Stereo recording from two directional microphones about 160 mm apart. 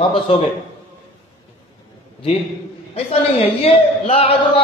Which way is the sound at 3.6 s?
40° left (ahead or behind).